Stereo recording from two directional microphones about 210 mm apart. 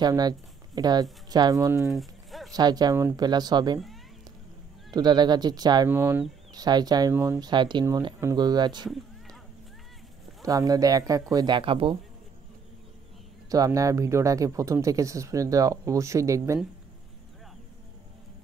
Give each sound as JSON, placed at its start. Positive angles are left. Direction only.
{"t": 0.0, "sound": "speech", "side_deg": -20}
{"t": 1.8, "sound": "pigeon", "side_deg": 0}
{"t": 2.5, "sound": "speech", "side_deg": -20}
{"t": 4.9, "sound": "speech", "side_deg": -20}
{"t": 8.8, "sound": "a sound", "side_deg": 0}
{"t": 10.4, "sound": "speech", "side_deg": -15}
{"t": 13.5, "sound": "speech", "side_deg": -15}